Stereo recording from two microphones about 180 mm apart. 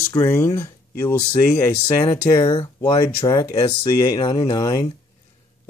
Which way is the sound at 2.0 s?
30° left (ahead or behind).